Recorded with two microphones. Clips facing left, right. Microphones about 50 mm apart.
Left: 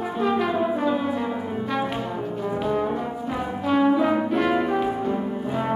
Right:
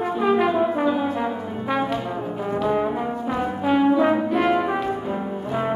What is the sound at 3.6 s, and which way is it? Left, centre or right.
Brass instrument, centre.